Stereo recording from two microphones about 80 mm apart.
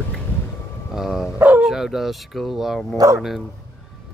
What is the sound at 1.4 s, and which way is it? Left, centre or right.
Dog, right.